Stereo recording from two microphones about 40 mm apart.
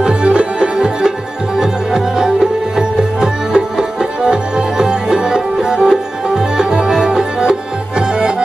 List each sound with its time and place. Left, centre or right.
0.0 s music: right